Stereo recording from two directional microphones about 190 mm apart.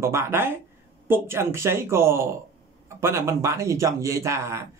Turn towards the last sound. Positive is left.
turn(degrees=-15)  # may be behind; listen again after turning